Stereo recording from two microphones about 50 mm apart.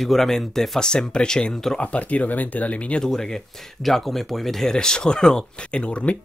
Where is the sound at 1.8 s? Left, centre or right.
Left.